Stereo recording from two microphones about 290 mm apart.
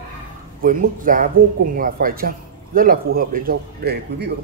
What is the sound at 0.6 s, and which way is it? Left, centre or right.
Speech, right.